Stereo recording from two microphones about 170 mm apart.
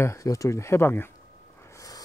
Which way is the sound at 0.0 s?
15° left (ahead or behind).